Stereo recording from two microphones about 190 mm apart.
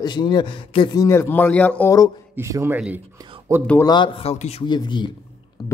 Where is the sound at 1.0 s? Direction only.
15° left (ahead or behind).